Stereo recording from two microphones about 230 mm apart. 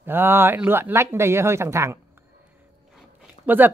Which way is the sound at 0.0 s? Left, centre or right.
Centre.